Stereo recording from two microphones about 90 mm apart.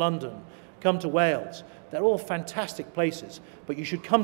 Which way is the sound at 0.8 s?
5° right (ahead or behind).